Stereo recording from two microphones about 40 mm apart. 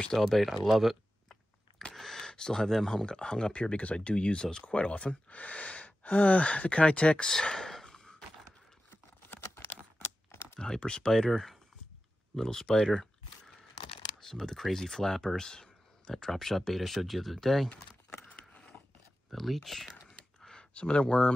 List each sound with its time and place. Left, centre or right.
0.3 s speech: centre
2.0 s speech: centre
4.6 s speech: left
7.4 s a sound: centre
9.3 s computer keyboard: left
10.6 s speech: centre
14.2 s speech: centre
19.3 s speech: centre
20.7 s speech: left